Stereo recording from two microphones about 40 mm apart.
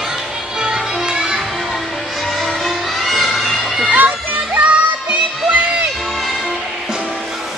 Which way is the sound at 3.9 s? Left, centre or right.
Right.